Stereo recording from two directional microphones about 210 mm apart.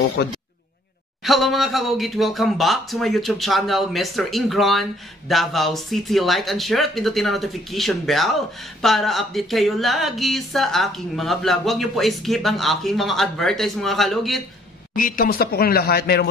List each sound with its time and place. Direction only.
0.2 s a man's voice: 50° left (ahead or behind)
1.2 s speech: centre (ahead or behind)
15.0 s a man's voice: 40° left (ahead or behind)